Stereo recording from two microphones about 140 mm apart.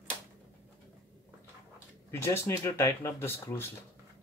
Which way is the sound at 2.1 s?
20° left (ahead or behind).